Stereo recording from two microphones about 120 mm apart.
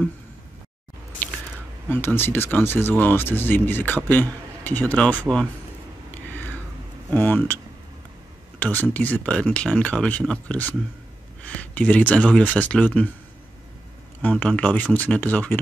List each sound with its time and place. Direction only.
1.9 s speech: 20° left (ahead or behind)
6.1 s a sound: 15° left (ahead or behind)
7.2 s speech: 15° left (ahead or behind)
8.5 s speech: 15° left (ahead or behind)
14.2 s speech: 10° left (ahead or behind)